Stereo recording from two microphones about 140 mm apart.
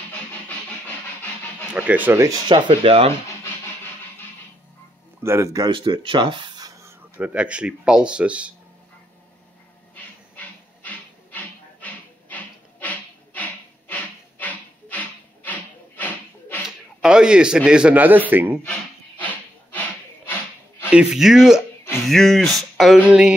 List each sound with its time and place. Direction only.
1.7 s speech: 10° right (ahead or behind)
2.2 s speech: 35° right (ahead or behind)
5.2 s speech: 20° right (ahead or behind)
5.7 s speech: 35° right (ahead or behind)
6.9 s speech: 10° right (ahead or behind)
9.9 s a sound: 10° left (ahead or behind)
16.6 s a sound: 5° right (ahead or behind)
18.3 s speech: 15° right (ahead or behind)
20.9 s speech: 5° right (ahead or behind)
22.6 s a sound: centre (ahead or behind)
23.0 s speech: 5° right (ahead or behind)